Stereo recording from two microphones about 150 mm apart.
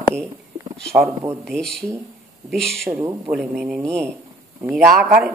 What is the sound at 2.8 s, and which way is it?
Speech, 20° right (ahead or behind).